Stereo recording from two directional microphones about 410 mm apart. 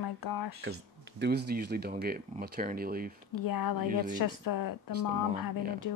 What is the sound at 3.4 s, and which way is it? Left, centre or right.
A woman's voice, left.